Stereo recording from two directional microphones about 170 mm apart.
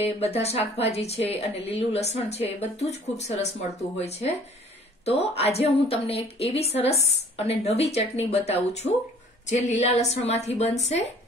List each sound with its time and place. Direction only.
0.0 s a woman's voice: 40° left (ahead or behind)